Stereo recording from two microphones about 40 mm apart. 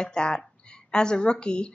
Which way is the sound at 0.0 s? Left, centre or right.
Left.